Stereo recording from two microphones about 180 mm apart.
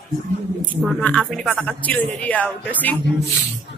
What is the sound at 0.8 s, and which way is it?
Speech, centre (ahead or behind).